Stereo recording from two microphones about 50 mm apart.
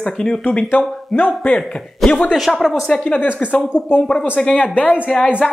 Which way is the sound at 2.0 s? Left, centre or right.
Centre.